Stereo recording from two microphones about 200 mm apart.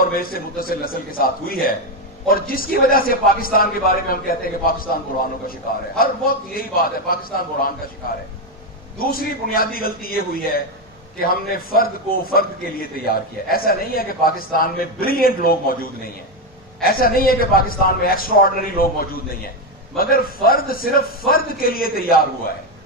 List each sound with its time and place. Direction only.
0.0 s a man's voice: 45° left (ahead or behind)
8.9 s a man's voice: 45° left (ahead or behind)